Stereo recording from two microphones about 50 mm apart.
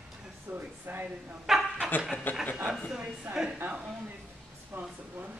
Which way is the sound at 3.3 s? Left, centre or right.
Right.